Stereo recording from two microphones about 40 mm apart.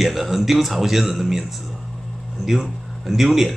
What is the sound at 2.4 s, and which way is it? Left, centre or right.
Speech, centre.